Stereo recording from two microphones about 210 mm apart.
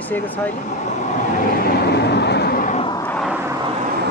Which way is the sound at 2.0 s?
55° left (ahead or behind).